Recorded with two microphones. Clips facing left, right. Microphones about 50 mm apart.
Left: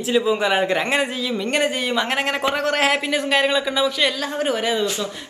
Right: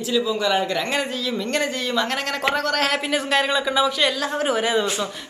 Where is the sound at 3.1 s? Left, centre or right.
Centre.